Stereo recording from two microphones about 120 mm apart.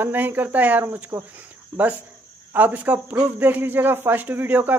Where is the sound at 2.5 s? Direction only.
15° right (ahead or behind).